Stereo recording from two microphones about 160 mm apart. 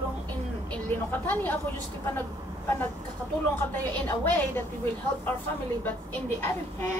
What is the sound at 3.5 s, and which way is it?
A woman's voice, 10° left (ahead or behind).